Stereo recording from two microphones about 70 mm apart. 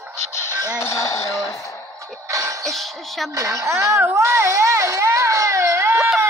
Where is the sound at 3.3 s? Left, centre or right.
Right.